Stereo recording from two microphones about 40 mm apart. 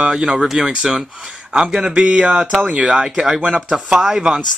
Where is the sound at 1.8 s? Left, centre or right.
Right.